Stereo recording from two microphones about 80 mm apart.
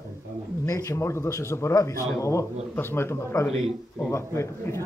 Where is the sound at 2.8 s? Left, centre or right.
Left.